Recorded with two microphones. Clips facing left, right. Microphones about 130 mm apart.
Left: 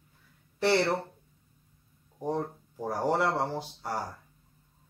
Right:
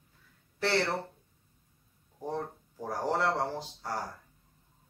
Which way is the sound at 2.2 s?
15° left (ahead or behind).